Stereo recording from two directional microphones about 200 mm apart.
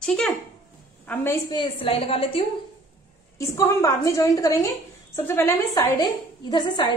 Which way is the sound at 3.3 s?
15° left (ahead or behind).